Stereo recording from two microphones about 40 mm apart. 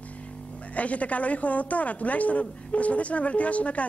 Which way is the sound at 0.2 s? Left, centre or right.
Left.